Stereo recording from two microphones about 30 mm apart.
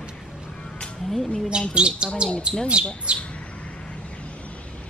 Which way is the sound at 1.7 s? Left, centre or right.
Right.